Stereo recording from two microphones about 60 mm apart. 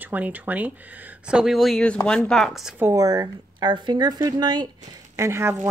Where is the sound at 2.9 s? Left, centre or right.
Right.